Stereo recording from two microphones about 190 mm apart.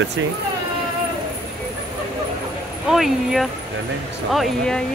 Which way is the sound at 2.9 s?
Centre (ahead or behind).